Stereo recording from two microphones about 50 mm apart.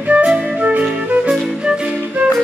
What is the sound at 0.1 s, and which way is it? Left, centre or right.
Music, right.